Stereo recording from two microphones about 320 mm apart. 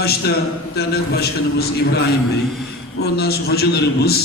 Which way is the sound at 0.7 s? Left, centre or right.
Left.